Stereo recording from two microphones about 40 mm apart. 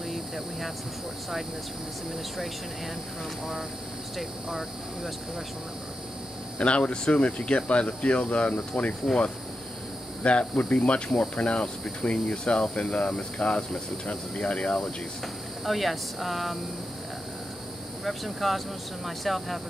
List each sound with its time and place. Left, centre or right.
4.2 s speech: centre
6.6 s cricket: left
9.0 s cricket: centre
10.2 s cricket: left
15.6 s speech: centre
18.0 s speech: centre